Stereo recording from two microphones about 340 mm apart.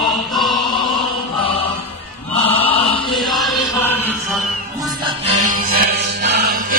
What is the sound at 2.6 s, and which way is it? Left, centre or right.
Chant, centre.